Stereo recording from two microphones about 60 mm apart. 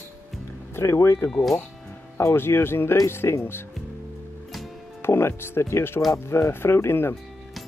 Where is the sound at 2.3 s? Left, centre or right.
Left.